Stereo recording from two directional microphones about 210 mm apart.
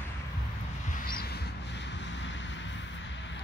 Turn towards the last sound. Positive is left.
turn(degrees=60)  # may be behind; listen again after turning